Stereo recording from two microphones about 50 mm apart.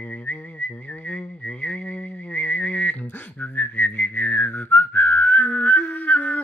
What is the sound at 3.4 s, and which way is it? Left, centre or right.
Whistling, left.